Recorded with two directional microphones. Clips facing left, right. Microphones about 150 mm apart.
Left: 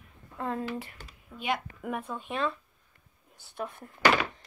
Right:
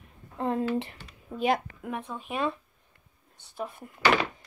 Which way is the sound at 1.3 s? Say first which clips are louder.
Right 6 dB; 40° right (ahead or behind).